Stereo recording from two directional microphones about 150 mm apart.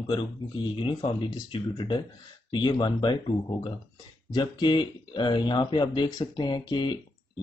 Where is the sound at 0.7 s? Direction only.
35° left (ahead or behind).